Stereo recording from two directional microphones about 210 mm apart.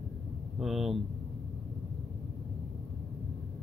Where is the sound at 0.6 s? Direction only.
Centre (ahead or behind).